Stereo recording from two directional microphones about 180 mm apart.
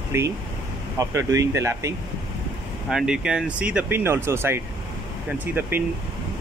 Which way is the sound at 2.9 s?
5° right (ahead or behind).